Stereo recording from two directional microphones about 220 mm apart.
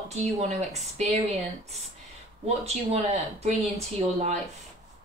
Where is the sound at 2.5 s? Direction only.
30° right (ahead or behind).